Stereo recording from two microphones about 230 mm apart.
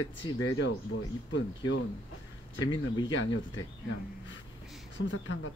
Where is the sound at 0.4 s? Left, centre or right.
Left.